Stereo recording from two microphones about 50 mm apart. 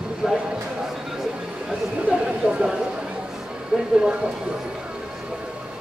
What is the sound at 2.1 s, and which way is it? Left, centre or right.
Speech, right.